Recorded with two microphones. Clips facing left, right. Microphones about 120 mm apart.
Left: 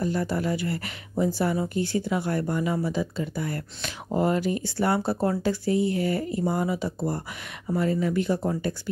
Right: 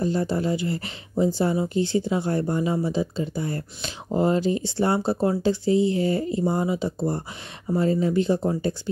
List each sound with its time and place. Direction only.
0.0 s speech: 25° right (ahead or behind)